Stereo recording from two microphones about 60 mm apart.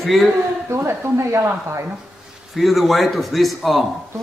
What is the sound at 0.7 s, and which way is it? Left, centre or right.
Speech, right.